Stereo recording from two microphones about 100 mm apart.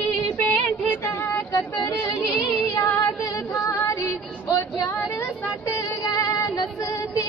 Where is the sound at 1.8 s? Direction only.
30° left (ahead or behind).